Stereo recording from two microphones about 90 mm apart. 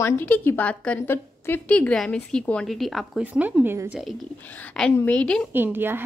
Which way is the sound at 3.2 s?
15° right (ahead or behind).